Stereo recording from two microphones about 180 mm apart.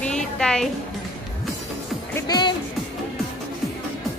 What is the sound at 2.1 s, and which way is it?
Music, 20° left (ahead or behind).